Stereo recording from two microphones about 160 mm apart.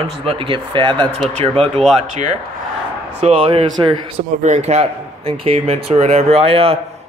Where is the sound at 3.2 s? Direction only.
35° right (ahead or behind).